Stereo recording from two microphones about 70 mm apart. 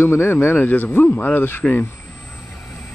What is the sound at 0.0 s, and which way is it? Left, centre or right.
Speech, left.